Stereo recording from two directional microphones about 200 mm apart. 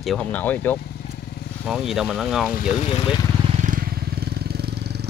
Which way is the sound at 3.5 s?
40° right (ahead or behind).